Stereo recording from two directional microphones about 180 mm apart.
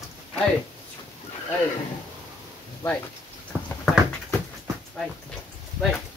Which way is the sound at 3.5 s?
10° right (ahead or behind).